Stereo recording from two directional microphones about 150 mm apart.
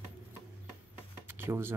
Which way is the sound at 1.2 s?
15° right (ahead or behind).